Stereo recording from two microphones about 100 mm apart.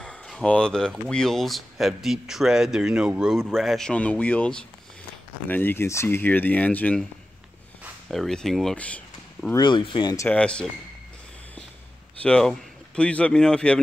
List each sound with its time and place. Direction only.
0.0 s speech: 10° left (ahead or behind); by 3.3 s 10° right (ahead or behind)
3.5 s speech: 5° left (ahead or behind)
8.1 s speech: 5° left (ahead or behind)
8.7 s a sound: 15° left (ahead or behind)
9.6 s speech: 50° left (ahead or behind)
10.3 s speech: 10° left (ahead or behind)
12.2 s speech: 10° left (ahead or behind)